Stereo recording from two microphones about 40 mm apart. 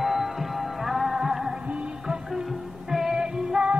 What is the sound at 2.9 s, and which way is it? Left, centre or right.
Music, centre.